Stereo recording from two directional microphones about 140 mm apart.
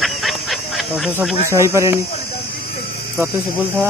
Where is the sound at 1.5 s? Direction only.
20° right (ahead or behind).